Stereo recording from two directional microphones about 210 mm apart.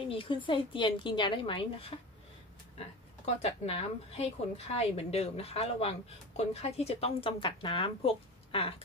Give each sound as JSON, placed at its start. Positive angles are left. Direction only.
{"t": 0.1, "sound": "a woman's voice", "side_deg": 25}
{"t": 3.4, "sound": "a woman's voice", "side_deg": 30}